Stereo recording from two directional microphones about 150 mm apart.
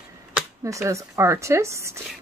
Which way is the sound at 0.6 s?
20° right (ahead or behind).